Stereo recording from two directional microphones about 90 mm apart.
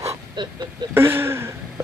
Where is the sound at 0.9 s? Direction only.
25° right (ahead or behind).